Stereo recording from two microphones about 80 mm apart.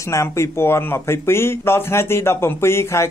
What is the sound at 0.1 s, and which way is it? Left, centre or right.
Speech, left.